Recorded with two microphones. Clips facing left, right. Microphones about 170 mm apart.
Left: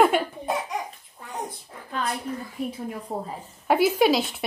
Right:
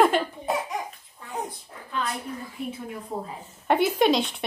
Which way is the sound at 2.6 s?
40° left (ahead or behind).